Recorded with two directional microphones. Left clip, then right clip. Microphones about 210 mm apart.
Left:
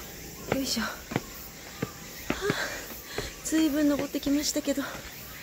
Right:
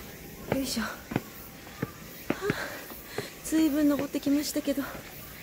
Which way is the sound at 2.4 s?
Centre (ahead or behind).